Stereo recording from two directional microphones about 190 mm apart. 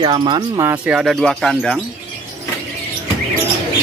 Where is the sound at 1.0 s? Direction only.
Centre (ahead or behind).